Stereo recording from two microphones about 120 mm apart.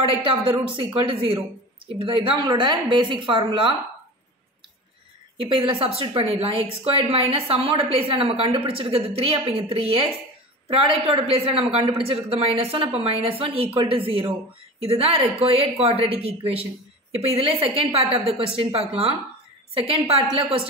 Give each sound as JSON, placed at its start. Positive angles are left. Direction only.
{"t": 0.0, "sound": "a woman's voice", "side_deg": -45}
{"t": 5.4, "sound": "a woman's voice", "side_deg": -45}